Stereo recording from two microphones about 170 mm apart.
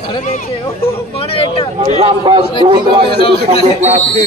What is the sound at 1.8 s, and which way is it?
A man's voice, 40° right (ahead or behind).